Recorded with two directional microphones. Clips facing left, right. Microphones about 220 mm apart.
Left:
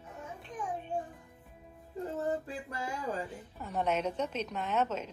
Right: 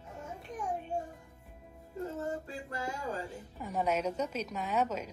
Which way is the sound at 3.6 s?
10° right (ahead or behind).